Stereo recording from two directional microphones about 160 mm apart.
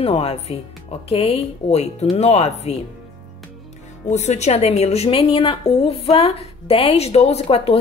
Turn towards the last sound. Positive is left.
turn(degrees=40)  # may be behind; listen again after turning